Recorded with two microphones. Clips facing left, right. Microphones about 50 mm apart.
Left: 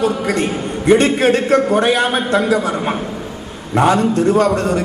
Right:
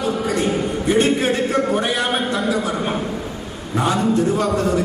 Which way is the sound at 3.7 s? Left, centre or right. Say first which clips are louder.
Left 5 dB; left.